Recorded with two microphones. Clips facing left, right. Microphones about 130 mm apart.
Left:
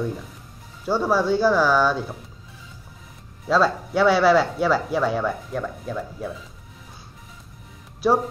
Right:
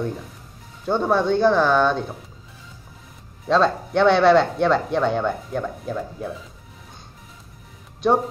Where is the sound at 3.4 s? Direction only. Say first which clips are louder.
Right 1 dB; 5° left (ahead or behind).